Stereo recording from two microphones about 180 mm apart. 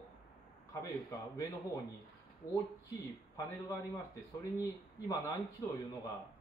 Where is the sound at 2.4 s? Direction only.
55° left (ahead or behind).